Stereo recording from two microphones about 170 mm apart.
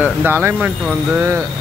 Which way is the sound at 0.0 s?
10° right (ahead or behind).